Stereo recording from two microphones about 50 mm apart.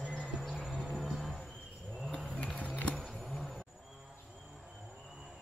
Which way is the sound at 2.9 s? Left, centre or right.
Centre.